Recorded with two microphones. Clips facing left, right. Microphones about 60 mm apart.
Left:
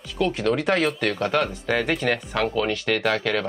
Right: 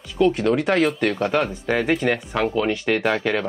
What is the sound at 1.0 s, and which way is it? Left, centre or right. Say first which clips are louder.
Speech: right 2 dB; centre.